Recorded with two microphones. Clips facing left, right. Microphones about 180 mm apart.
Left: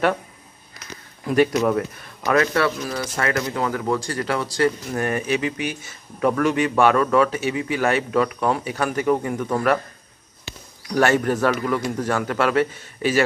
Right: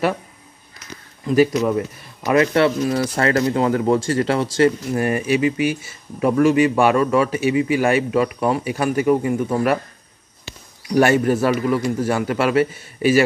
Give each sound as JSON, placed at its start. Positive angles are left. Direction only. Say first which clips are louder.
{"t": 1.2, "sound": "speech", "louder": "right 2 dB", "side_deg": -5}
{"t": 2.2, "sound": "speech", "louder": "right 4 dB", "side_deg": -20}
{"t": 4.9, "sound": "a man's voice", "louder": "right 4 dB", "side_deg": -10}
{"t": 11.0, "sound": "a man's voice", "louder": "right 3 dB", "side_deg": -10}